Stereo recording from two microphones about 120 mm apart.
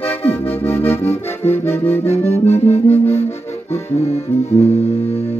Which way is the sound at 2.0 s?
60° left (ahead or behind).